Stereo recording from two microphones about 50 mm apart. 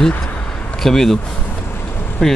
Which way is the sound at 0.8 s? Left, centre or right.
Centre.